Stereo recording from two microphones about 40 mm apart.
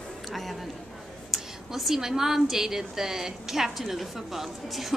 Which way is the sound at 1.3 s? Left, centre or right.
Centre.